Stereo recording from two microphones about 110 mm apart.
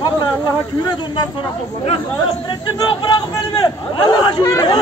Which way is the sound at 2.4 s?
45° left (ahead or behind).